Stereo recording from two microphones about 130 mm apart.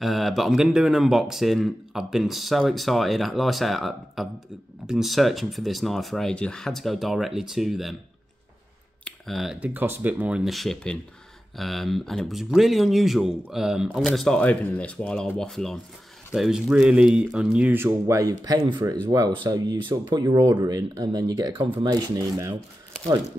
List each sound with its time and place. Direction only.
0.0 s speech: centre (ahead or behind)
9.0 s speech: centre (ahead or behind); by 22.2 s 30° right (ahead or behind)